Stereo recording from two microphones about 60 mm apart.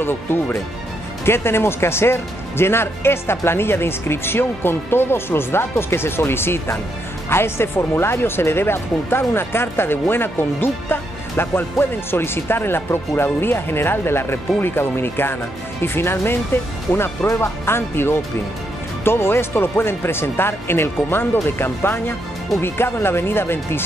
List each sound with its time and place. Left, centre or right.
0.0 s speech: left